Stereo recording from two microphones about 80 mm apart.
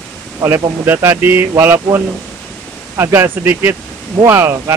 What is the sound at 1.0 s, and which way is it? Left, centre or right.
Speech, right.